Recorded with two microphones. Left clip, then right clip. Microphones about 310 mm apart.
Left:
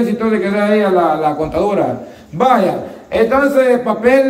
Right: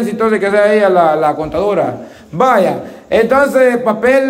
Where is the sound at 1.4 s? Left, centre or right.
Centre.